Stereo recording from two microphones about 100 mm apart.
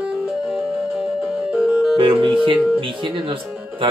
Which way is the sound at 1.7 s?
5° right (ahead or behind).